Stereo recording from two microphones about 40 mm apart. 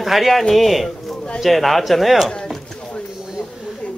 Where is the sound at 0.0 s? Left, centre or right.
Centre.